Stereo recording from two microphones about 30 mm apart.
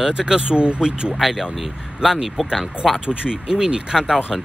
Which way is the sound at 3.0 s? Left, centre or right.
Right.